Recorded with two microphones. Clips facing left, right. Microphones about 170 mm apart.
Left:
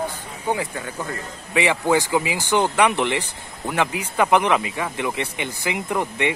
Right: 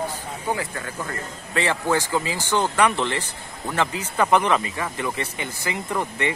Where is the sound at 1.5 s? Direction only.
15° left (ahead or behind).